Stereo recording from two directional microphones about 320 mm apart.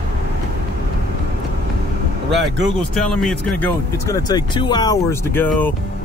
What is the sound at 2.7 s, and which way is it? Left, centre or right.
Speech, centre.